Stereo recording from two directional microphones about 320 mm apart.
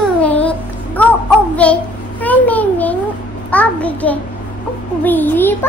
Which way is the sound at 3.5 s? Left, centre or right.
Centre.